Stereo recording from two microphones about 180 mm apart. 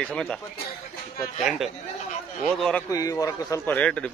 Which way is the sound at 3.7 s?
5° left (ahead or behind).